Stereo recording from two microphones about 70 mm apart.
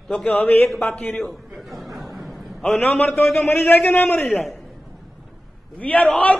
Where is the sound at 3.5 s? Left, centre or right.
Left.